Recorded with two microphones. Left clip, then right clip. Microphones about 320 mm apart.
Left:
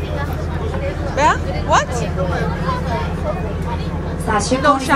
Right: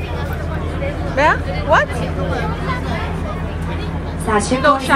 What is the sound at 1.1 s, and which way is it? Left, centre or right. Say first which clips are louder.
Vehicle: right 1 dB; centre.